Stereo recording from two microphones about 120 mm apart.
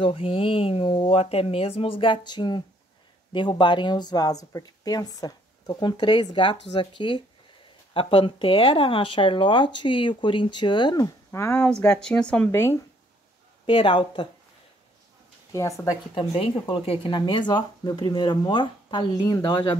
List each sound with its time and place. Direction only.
0.0 s speech: 50° left (ahead or behind)
11.3 s speech: 25° left (ahead or behind)
12.0 s speech: 5° left (ahead or behind)
12.4 s speech: 20° left (ahead or behind)
13.7 s speech: 45° left (ahead or behind)
15.5 s speech: 25° left (ahead or behind)
16.6 s speech: 50° left (ahead or behind)